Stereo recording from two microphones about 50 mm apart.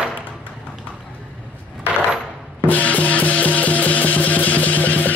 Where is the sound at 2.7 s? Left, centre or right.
Left.